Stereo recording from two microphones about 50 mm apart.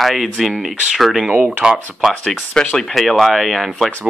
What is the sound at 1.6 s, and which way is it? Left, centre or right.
Speech, centre.